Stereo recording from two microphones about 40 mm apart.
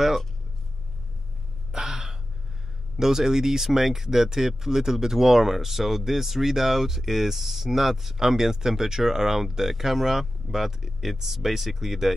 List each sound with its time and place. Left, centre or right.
1.7 s gasp: centre
3.0 s speech: centre